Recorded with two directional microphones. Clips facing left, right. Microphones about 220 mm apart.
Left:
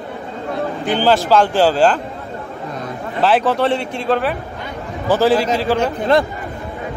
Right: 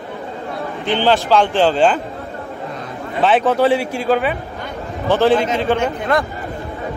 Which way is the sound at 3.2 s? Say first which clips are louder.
Right 1 dB; centre (ahead or behind).